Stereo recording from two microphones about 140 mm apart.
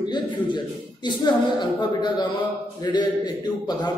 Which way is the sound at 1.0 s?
30° left (ahead or behind).